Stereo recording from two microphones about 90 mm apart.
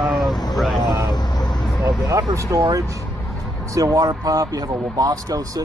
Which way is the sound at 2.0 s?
40° right (ahead or behind).